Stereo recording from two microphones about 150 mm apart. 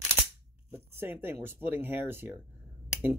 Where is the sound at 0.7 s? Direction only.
15° right (ahead or behind).